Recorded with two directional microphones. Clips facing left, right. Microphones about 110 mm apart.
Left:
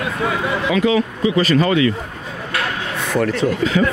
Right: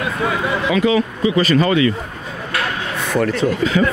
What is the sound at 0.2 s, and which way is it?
Speech, 25° right (ahead or behind).